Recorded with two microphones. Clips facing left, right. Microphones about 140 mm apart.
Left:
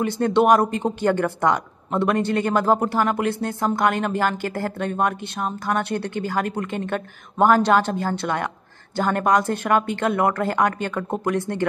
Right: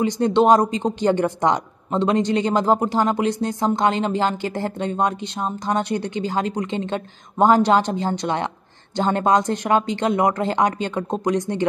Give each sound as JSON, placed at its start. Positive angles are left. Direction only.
{"t": 0.0, "sound": "a woman's voice", "side_deg": -20}